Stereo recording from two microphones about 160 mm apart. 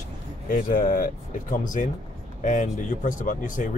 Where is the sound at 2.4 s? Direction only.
55° left (ahead or behind).